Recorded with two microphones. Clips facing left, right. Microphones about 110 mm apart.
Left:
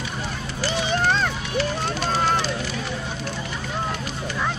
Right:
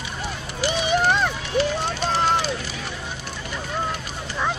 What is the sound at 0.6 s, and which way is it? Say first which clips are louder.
Run: right 2 dB; 15° right (ahead or behind).